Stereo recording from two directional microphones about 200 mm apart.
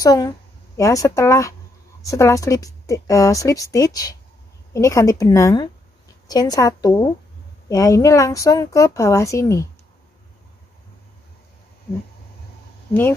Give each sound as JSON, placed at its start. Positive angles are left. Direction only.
{"t": 0.0, "sound": "a woman's voice", "side_deg": 20}